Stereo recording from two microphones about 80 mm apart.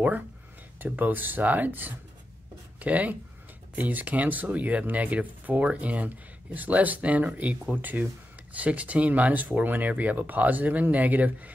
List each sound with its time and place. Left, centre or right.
0.7 s speech: right